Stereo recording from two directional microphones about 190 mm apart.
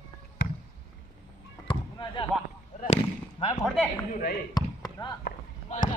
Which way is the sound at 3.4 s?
25° left (ahead or behind).